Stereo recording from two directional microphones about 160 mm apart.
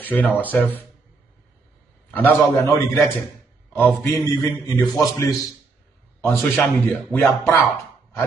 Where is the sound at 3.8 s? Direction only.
15° left (ahead or behind).